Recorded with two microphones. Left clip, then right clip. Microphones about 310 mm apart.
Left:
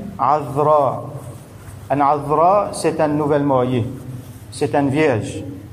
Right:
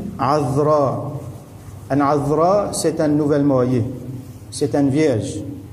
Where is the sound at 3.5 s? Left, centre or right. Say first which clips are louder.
Even; left.